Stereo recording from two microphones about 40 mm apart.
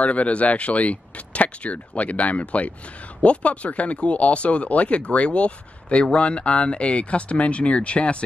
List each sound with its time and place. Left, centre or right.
0.0 s speech: left